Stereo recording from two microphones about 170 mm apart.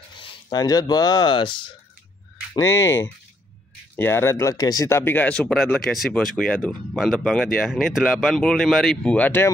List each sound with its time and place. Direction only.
0.2 s speech: 25° left (ahead or behind)
2.5 s speech: 15° left (ahead or behind)